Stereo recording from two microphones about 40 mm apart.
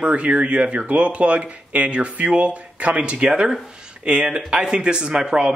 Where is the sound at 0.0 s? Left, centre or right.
Right.